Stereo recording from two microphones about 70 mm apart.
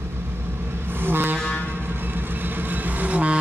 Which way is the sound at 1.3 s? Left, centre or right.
Centre.